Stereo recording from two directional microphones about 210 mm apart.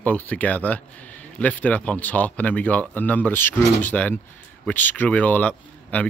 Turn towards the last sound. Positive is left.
turn(degrees=5)  # may be behind; listen again after turning